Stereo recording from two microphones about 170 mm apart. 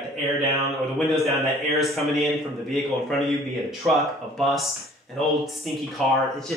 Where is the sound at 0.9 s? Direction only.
Centre (ahead or behind).